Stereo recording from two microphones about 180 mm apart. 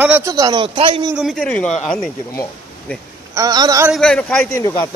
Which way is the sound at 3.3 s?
20° right (ahead or behind).